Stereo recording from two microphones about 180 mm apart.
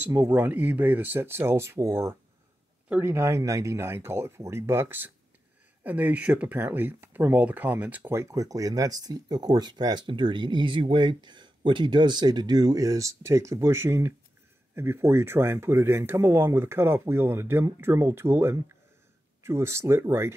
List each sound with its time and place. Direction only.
0.0 s speech: 15° right (ahead or behind)